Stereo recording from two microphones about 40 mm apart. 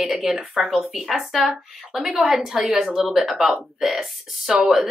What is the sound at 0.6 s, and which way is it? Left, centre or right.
Speech, centre.